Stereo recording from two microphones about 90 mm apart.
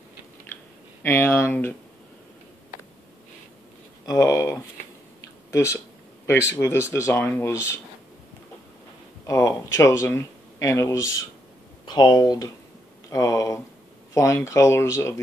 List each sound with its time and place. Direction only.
1.0 s speech: 30° left (ahead or behind)
4.0 s speech: 40° left (ahead or behind)
9.2 s speech: 35° left (ahead or behind)
11.8 s speech: 55° left (ahead or behind); by 15.1 s 30° left (ahead or behind)